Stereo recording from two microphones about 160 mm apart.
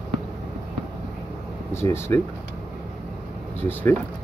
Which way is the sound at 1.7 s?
15° left (ahead or behind).